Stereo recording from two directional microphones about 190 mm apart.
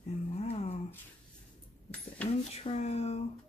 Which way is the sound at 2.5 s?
30° left (ahead or behind).